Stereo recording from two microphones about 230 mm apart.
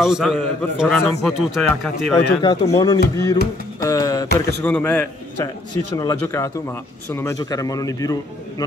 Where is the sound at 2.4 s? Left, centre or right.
Centre.